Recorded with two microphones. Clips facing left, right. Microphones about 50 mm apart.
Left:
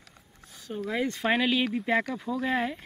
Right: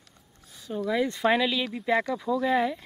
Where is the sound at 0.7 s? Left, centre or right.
Centre.